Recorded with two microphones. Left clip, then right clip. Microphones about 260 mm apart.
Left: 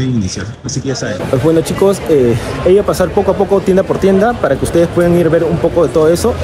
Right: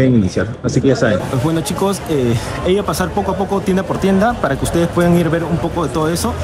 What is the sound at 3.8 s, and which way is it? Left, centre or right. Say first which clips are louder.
Speech: left 5 dB; centre.